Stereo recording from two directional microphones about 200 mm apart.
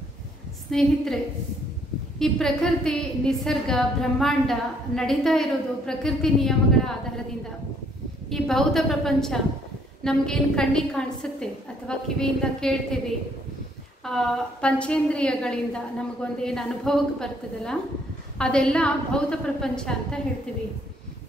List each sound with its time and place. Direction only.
0.7 s a woman's voice: centre (ahead or behind)
2.1 s a woman's voice: 5° left (ahead or behind)
8.3 s a woman's voice: centre (ahead or behind)
14.0 s a woman's voice: centre (ahead or behind)